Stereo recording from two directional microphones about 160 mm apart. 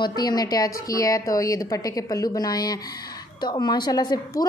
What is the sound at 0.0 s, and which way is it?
A woman's voice, 25° left (ahead or behind).